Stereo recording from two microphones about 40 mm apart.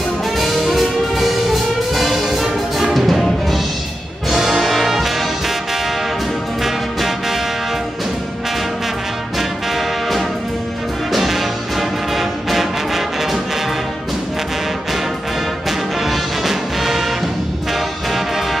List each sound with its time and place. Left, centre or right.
0.4 s music: centre
4.3 s music: centre
6.6 s music: centre
11.1 s music: centre
16.1 s music: centre